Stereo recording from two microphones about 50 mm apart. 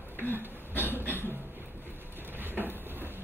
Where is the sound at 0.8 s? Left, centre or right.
Right.